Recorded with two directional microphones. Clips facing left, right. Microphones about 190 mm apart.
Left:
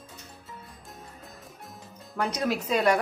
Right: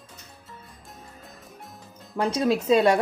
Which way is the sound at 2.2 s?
25° right (ahead or behind).